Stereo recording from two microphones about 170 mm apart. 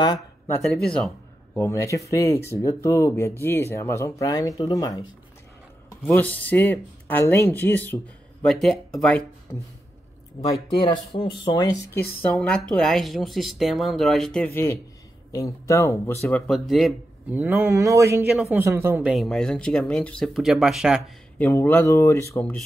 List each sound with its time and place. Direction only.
0.6 s a man's voice: 5° left (ahead or behind)
1.6 s speech: 15° left (ahead or behind)
6.1 s speech: 10° left (ahead or behind)
10.8 s speech: 30° left (ahead or behind)
12.2 s speech: 5° left (ahead or behind)
16.4 s speech: centre (ahead or behind)
17.3 s speech: 10° right (ahead or behind)
21.4 s speech: 15° left (ahead or behind)